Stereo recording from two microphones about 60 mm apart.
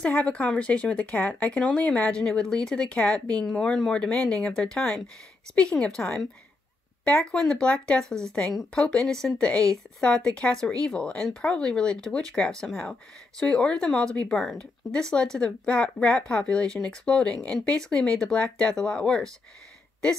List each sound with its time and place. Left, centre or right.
0.0 s speech: left
7.2 s speech: centre
14.3 s speech: centre
14.6 s speech: centre